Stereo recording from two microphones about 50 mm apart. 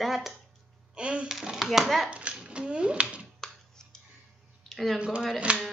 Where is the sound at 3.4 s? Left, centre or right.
Centre.